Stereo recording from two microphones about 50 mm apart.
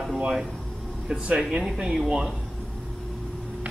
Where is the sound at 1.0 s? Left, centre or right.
Centre.